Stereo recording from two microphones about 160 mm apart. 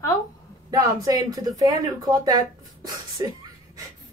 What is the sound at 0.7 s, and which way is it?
Speech, 25° right (ahead or behind).